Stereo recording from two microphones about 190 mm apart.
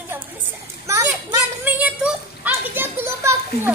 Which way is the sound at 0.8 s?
15° right (ahead or behind).